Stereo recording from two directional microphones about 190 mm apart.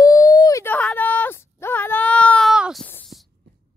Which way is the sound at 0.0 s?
20° left (ahead or behind).